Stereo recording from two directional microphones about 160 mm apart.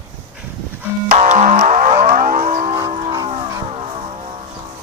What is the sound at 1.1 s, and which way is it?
Music, 50° right (ahead or behind).